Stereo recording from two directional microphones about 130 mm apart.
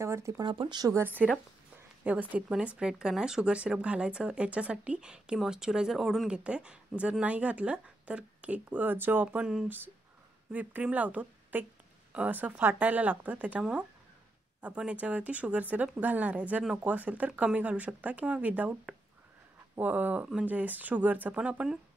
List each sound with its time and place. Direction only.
0.0 s speech: 20° right (ahead or behind)
0.5 s speech: 40° right (ahead or behind)
0.9 s speech: 15° right (ahead or behind)